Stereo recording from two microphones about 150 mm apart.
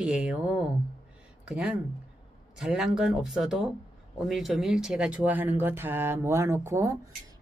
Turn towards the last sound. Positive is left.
turn(degrees=-20)  # may be behind; listen again after turning